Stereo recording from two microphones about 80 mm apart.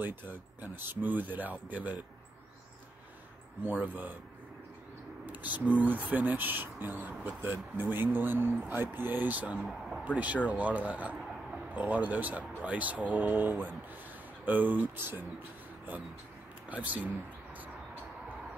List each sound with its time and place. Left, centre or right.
0.0 s speech: right
3.8 s speech: right
5.2 s a sound: right
5.8 s speech: right
9.6 s a sound: centre
10.1 s speech: centre
16.6 s speech: centre